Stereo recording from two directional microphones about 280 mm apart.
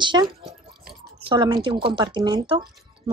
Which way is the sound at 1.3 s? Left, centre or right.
Centre.